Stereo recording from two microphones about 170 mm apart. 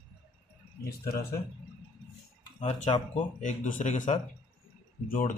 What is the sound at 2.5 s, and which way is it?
Speech, 40° left (ahead or behind).